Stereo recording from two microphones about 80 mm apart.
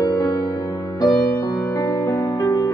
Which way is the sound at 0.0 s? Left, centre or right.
Left.